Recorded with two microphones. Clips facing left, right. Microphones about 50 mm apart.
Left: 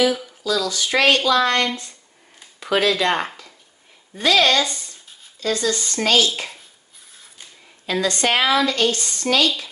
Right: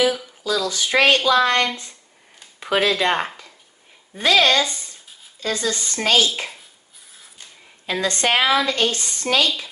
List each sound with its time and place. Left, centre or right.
0.4 s speech: right
7.8 s speech: right